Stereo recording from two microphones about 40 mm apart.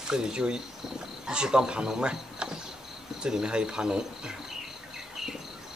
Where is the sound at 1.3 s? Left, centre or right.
Centre.